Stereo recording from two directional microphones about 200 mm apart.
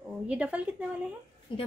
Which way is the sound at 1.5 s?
25° left (ahead or behind).